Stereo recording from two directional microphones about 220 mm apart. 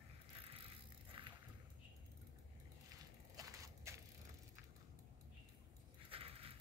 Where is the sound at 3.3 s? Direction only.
15° right (ahead or behind).